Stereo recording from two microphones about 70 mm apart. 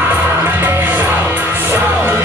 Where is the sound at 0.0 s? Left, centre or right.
Right.